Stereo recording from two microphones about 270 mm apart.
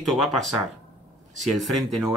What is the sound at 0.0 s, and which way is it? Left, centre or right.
Speech, centre.